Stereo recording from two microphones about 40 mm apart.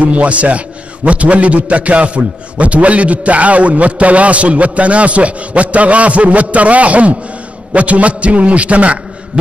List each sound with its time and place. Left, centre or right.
0.0 s a man's voice: right